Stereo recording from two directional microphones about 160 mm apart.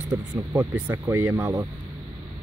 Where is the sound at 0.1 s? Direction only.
20° right (ahead or behind).